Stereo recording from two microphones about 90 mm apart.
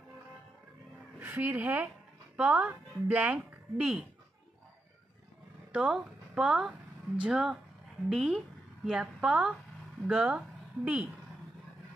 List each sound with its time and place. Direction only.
1.2 s speech: 20° right (ahead or behind)
5.7 s a woman's voice: 10° right (ahead or behind)